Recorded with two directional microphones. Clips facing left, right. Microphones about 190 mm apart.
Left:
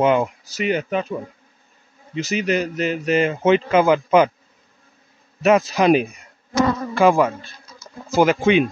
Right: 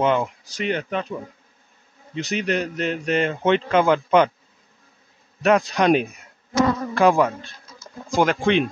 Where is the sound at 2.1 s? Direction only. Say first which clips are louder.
Left 3 dB; 5° left (ahead or behind).